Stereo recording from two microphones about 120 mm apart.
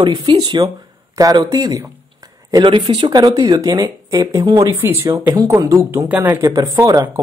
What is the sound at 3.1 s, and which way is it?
Speech, 35° right (ahead or behind).